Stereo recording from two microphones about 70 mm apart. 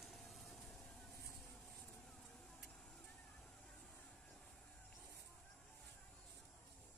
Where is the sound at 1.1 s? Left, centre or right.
Left.